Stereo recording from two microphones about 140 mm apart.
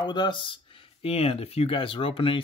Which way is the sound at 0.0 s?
35° left (ahead or behind).